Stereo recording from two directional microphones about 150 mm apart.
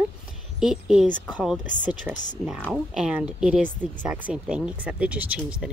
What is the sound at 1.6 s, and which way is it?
Speech, 55° left (ahead or behind).